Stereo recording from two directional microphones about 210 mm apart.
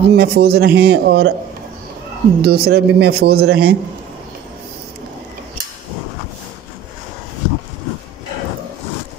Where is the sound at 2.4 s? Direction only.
50° right (ahead or behind).